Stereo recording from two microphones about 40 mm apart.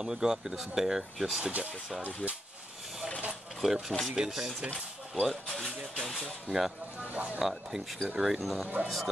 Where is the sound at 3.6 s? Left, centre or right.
Right.